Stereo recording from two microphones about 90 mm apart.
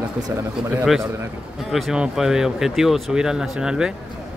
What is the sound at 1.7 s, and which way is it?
Speech, 5° right (ahead or behind).